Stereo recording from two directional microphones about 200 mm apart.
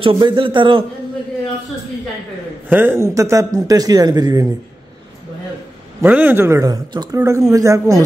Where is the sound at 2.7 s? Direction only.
10° right (ahead or behind).